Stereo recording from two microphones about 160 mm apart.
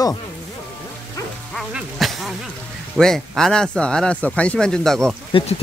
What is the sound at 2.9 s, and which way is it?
Speech, 5° left (ahead or behind).